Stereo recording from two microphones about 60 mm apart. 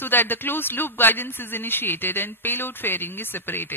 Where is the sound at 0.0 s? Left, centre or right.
Left.